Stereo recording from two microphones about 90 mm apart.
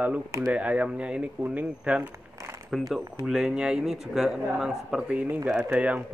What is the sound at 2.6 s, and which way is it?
Speech, 5° right (ahead or behind).